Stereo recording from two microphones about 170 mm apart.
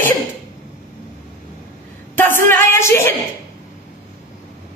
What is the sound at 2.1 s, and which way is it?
Speech, 10° left (ahead or behind).